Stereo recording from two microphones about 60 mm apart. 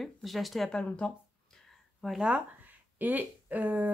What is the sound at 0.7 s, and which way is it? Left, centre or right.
A woman's voice, centre.